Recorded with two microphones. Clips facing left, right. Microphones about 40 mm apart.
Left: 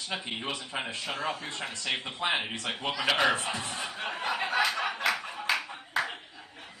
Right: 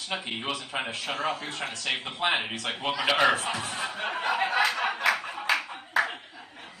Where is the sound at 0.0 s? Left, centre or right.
Right.